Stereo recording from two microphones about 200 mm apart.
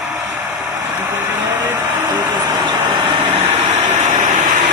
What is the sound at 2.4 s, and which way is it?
Vehicle, 20° right (ahead or behind).